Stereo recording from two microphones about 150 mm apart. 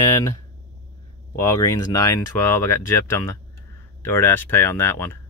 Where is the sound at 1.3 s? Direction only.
20° left (ahead or behind).